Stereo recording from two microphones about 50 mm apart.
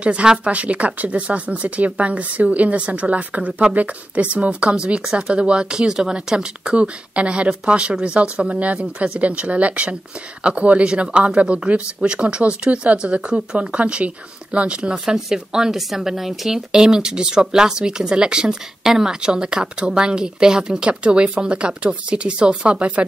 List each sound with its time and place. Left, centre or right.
0.0 s speech: right